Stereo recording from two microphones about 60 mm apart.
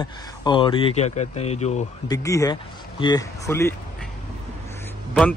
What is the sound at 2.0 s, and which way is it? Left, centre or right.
Speech, left.